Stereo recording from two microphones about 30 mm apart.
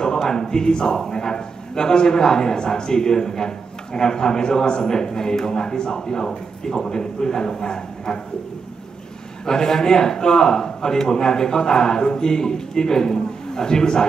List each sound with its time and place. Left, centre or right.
0.0 s a sound: centre
1.1 s a man's voice: left
9.5 s a man's voice: centre